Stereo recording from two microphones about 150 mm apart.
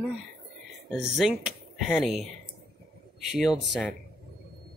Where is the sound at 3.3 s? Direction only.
5° right (ahead or behind).